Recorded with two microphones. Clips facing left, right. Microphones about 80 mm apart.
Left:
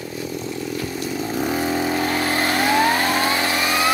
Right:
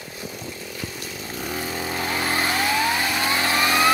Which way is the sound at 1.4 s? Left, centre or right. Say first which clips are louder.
Left 7 dB; left.